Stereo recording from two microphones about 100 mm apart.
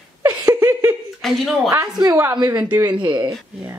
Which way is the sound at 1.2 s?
Centre (ahead or behind).